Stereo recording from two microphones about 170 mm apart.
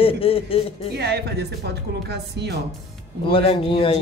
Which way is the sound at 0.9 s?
70° right (ahead or behind).